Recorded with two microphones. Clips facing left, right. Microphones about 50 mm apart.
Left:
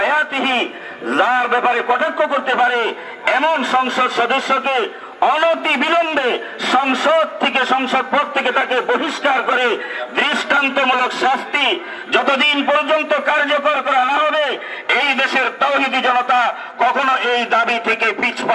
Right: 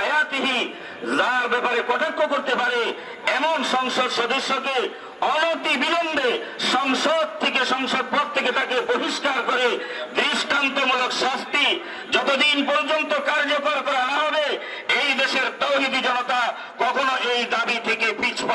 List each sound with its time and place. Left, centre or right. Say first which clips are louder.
0.0 s a man's voice: left 5 dB; left